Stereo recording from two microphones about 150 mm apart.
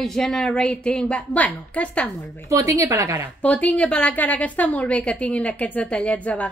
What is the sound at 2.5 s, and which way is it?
Speech, 20° right (ahead or behind).